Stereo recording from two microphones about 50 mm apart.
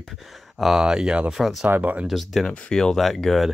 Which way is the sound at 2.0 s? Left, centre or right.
Centre.